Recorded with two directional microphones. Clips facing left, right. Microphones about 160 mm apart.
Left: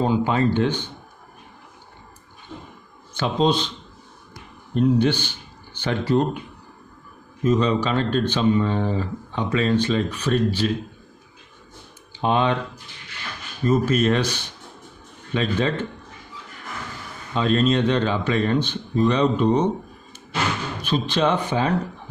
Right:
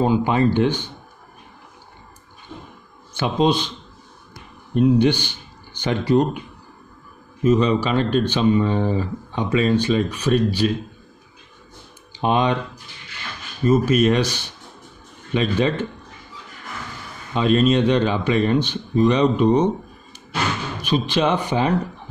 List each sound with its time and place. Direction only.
0.0 s speech: 10° right (ahead or behind)
2.5 s a sound: 10° right (ahead or behind)
3.2 s speech: 10° right (ahead or behind)
4.7 s speech: 15° right (ahead or behind)
7.4 s speech: 10° right (ahead or behind)
12.2 s speech: 15° right (ahead or behind)
13.7 s speech: 10° right (ahead or behind)
17.3 s speech: 10° right (ahead or behind)